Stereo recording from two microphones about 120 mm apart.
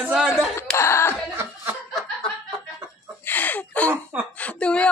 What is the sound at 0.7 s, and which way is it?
Cough, 20° left (ahead or behind).